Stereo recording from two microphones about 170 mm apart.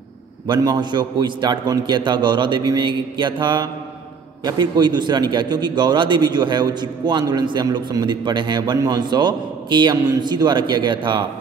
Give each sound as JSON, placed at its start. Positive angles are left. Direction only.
{"t": 0.5, "sound": "a man's voice", "side_deg": -25}